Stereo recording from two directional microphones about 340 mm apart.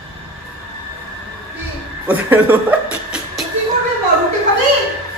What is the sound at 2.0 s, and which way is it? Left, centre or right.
Speech, centre.